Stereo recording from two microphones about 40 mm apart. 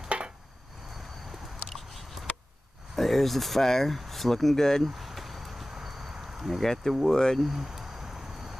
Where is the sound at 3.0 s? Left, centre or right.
Centre.